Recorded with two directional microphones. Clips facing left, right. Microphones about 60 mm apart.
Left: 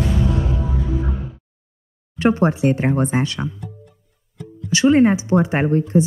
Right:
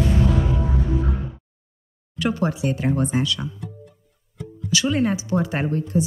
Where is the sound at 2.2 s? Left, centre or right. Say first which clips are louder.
Left 6 dB; left.